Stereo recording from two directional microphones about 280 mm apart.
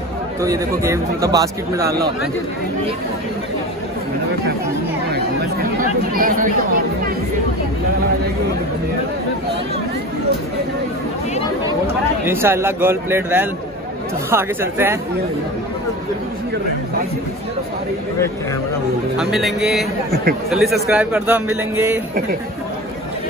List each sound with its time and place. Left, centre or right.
0.4 s speech: centre
1.9 s speech: right
5.1 s speech: right
12.3 s speech: centre
19.1 s a man's voice: centre